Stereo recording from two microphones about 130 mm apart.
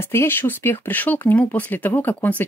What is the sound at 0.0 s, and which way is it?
Speech, 15° left (ahead or behind).